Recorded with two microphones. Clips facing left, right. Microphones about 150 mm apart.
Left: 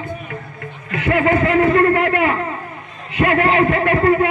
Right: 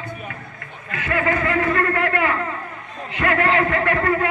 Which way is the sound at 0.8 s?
25° left (ahead or behind).